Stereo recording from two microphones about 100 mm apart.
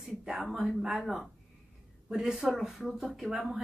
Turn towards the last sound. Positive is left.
turn(degrees=0)  # may be behind; listen again after turning